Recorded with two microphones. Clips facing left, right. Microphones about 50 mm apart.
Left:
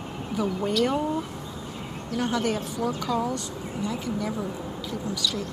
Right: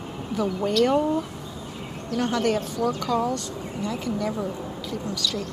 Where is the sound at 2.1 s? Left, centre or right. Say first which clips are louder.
Right 3 dB; centre.